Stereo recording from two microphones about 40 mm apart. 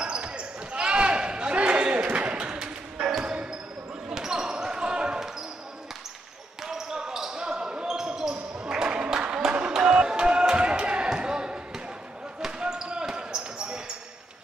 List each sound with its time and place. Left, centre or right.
0.0 s basketball bounce: right
3.0 s basketball bounce: centre
6.7 s basketball bounce: centre